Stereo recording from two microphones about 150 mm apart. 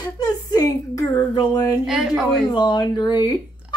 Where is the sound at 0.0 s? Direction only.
25° left (ahead or behind).